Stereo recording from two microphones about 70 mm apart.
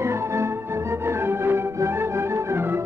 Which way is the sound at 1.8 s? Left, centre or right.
Right.